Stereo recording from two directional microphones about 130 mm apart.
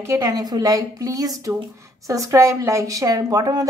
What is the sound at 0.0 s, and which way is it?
A woman's voice, 25° right (ahead or behind).